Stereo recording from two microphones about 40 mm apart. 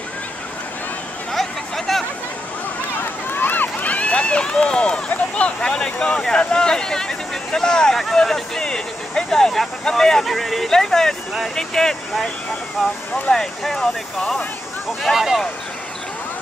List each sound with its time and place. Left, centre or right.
1.3 s a sound: centre
3.0 s run: left
5.3 s speech: left
7.9 s speech: centre
8.5 s speech: centre
10.2 s speech: centre
10.7 s speech: centre
12.8 s speech: centre
13.3 s speech: centre
15.0 s speech: centre